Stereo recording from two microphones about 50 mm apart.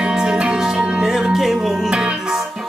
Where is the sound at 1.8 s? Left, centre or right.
Centre.